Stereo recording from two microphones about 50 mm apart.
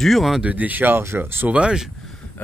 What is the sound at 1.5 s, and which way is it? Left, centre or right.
Speech, centre.